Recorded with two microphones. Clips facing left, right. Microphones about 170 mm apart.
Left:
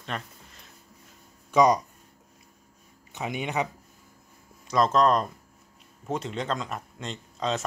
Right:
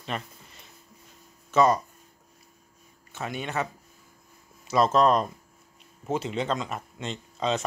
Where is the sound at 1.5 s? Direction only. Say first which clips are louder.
Left 1 dB; 15° left (ahead or behind).